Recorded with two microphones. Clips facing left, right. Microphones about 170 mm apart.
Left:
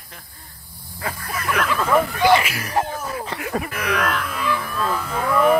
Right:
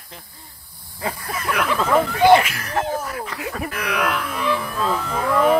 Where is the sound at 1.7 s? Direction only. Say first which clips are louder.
Right 1 dB; 20° right (ahead or behind).